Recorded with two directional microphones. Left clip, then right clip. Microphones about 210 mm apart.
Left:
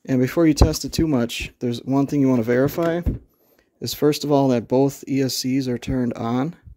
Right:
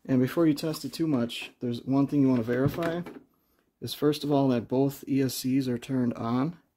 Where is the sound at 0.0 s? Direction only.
25° left (ahead or behind).